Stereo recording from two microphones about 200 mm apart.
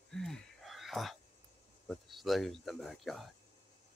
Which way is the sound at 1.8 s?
Centre (ahead or behind).